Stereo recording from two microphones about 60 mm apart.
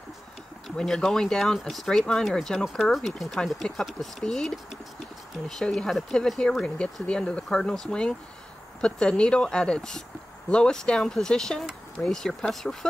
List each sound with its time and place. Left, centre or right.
0.7 s speech: centre
3.6 s speech: centre